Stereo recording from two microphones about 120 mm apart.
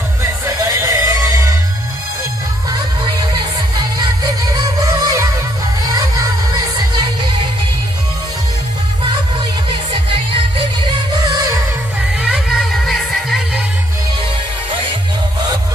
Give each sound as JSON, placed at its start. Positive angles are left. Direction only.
{"t": 0.2, "sound": "music", "side_deg": -25}
{"t": 4.8, "sound": "music", "side_deg": -30}
{"t": 12.3, "sound": "music", "side_deg": 0}